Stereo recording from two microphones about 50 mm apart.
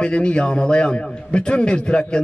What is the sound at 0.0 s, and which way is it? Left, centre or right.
A man's voice, left.